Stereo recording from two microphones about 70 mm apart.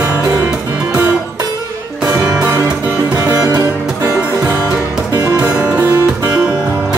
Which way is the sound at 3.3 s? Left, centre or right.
Right.